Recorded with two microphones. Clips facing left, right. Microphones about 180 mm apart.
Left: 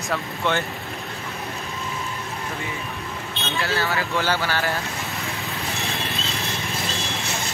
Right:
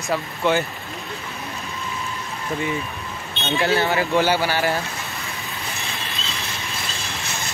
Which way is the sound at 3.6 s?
20° right (ahead or behind).